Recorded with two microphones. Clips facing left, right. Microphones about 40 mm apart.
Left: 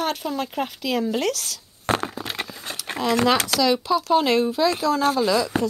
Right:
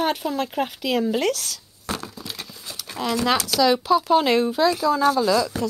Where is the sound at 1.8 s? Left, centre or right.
Left.